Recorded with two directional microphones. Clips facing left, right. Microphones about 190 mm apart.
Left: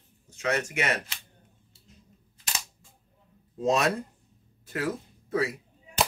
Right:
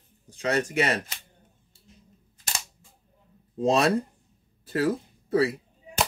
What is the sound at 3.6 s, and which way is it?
Speech, 30° right (ahead or behind).